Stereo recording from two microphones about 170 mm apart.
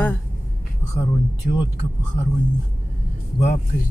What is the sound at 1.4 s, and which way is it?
Speech, 60° left (ahead or behind).